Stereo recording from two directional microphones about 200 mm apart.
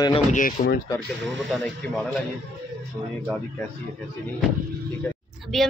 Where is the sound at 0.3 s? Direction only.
40° left (ahead or behind).